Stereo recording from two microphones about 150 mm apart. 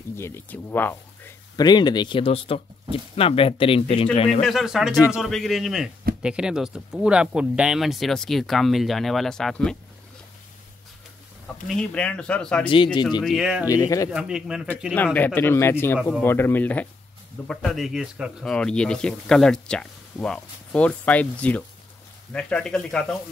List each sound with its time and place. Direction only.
0.1 s speech: 15° left (ahead or behind)
1.6 s speech: 30° left (ahead or behind)
4.4 s speech: centre (ahead or behind)
11.6 s speech: 5° left (ahead or behind)
12.6 s speech: 35° left (ahead or behind)
13.2 s speech: 5° right (ahead or behind)
13.7 s speech: 20° left (ahead or behind)
14.1 s speech: 5° right (ahead or behind)
15.1 s speech: 15° left (ahead or behind); by 18.5 s 5° right (ahead or behind)
18.5 s speech: 5° left (ahead or behind)